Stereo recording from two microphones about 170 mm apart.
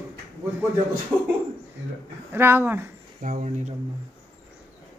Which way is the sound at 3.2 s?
45° right (ahead or behind).